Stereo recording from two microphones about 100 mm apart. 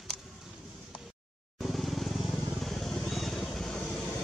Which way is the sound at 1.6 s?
Centre (ahead or behind).